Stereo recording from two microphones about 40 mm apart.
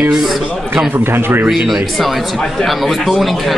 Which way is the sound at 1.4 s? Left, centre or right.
Centre.